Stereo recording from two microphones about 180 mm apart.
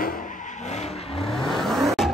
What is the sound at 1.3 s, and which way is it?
Vehicle, centre (ahead or behind).